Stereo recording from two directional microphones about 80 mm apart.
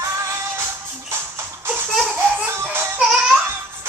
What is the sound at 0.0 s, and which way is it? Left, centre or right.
Music, right.